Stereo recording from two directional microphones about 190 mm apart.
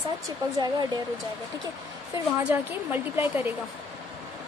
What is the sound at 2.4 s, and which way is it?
A woman's voice, 10° right (ahead or behind).